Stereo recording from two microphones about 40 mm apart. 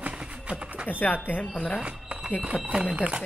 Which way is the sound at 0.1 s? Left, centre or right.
Right.